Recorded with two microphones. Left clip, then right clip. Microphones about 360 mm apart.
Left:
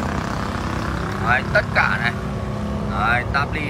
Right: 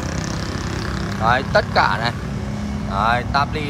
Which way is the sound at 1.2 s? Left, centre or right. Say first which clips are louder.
Right 2 dB; centre.